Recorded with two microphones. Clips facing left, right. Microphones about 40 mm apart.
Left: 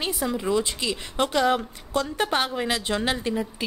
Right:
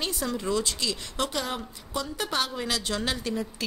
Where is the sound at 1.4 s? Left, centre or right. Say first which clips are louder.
Left 10 dB; left.